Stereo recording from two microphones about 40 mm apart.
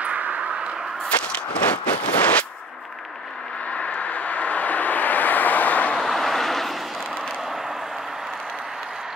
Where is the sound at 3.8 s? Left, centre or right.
Left.